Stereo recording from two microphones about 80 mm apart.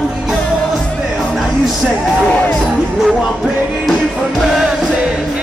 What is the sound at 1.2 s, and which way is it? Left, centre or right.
Music, centre.